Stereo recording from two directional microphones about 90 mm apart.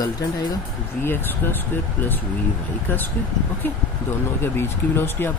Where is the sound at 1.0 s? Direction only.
25° left (ahead or behind).